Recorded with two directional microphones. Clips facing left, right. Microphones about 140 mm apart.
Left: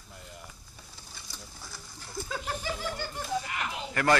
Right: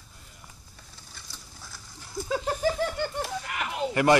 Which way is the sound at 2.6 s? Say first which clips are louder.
Right 8 dB; 60° right (ahead or behind).